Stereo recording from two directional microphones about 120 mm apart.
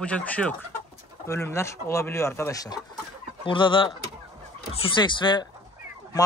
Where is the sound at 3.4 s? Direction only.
45° left (ahead or behind).